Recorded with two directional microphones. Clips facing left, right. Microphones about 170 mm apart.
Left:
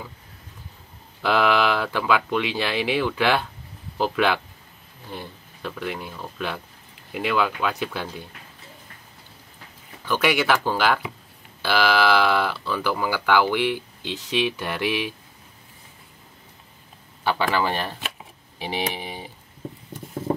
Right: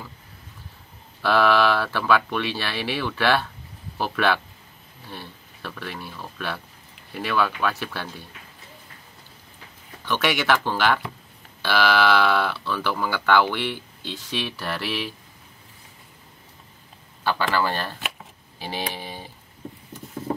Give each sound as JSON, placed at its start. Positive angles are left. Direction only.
{"t": 1.2, "sound": "speech", "side_deg": 15}
{"t": 10.0, "sound": "speech", "side_deg": 10}
{"t": 17.2, "sound": "speech", "side_deg": 15}